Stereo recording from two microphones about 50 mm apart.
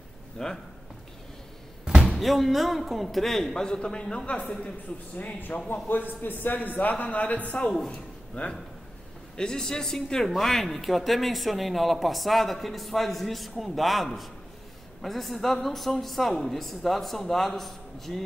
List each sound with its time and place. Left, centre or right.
0.4 s a man's voice: centre
2.1 s a man's voice: centre; by 4.7 s left
5.1 s a man's voice: left; by 18.2 s centre